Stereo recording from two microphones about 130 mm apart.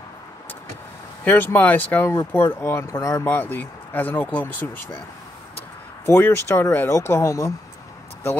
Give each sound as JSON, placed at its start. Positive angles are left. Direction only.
{"t": 1.2, "sound": "speech", "side_deg": 15}
{"t": 6.0, "sound": "speech", "side_deg": 15}